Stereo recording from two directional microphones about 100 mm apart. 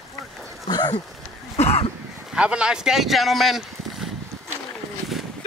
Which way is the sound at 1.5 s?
90° left.